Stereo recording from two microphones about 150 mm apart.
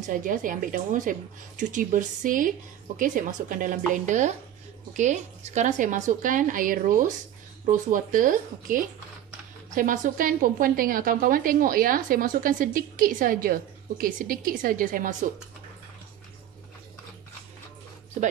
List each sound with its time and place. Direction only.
0.0 s a woman's voice: 60° right (ahead or behind)